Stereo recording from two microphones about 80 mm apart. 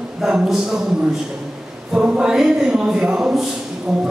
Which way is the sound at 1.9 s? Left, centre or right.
Centre.